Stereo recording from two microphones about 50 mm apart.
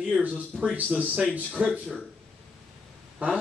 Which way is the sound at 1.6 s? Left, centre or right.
Right.